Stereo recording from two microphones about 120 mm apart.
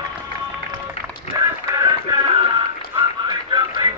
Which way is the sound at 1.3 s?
30° right (ahead or behind).